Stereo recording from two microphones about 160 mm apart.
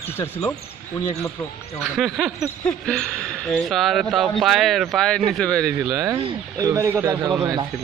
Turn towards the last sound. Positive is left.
turn(degrees=-25)  # may be behind; listen again after turning